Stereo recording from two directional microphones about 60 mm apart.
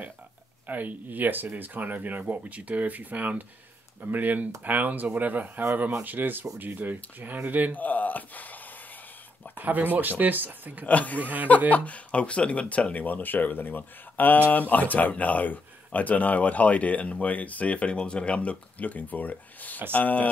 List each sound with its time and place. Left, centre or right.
0.7 s speech: right
7.7 s speech: left
9.6 s speech: right
10.9 s speech: left
11.1 s speech: right
11.7 s speech: left